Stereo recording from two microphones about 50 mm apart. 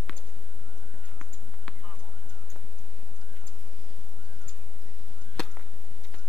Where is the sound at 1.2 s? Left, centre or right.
Centre.